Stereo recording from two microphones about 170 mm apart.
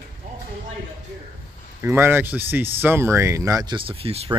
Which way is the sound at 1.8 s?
15° right (ahead or behind).